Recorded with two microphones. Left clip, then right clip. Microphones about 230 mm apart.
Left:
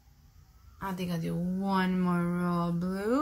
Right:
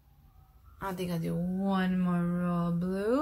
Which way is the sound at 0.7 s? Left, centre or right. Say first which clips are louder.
Right 1 dB; centre.